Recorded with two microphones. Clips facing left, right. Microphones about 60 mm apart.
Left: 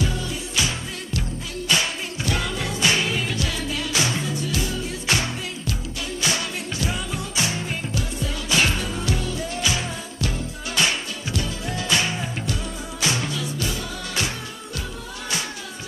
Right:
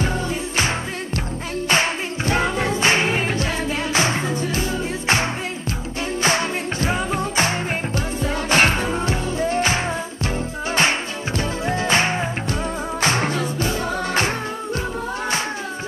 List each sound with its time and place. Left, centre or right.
0.6 s music: right